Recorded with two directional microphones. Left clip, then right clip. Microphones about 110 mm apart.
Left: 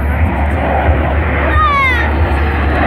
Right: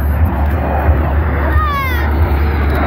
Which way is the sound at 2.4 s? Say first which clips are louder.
Left 3 dB; 70° left (ahead or behind).